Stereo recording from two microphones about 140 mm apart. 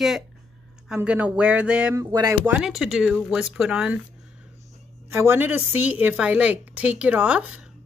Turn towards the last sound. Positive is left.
turn(degrees=-10)  # may be behind; listen again after turning